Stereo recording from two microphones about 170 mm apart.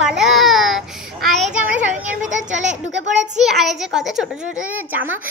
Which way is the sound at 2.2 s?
45° right (ahead or behind).